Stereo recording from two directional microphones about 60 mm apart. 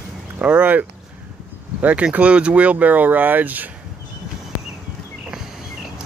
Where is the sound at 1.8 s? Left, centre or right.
Right.